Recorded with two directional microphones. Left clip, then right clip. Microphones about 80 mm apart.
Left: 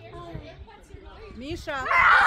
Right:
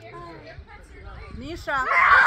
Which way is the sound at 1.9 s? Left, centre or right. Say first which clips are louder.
Right 1 dB; centre.